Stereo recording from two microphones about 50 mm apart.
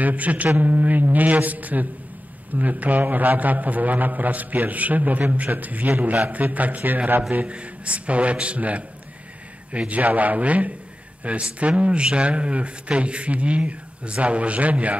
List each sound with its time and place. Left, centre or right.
0.0 s a man's voice: right
7.4 s a man's voice: right